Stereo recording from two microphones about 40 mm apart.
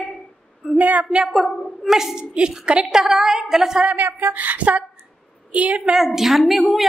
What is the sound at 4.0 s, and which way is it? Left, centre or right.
A woman's voice, right.